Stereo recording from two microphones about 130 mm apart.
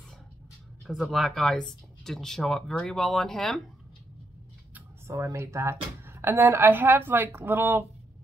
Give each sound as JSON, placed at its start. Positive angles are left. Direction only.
{"t": 0.8, "sound": "speech", "side_deg": 0}
{"t": 4.7, "sound": "speech", "side_deg": -20}